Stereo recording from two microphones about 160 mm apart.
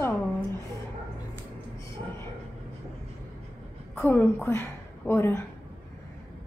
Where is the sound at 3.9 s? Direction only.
15° left (ahead or behind).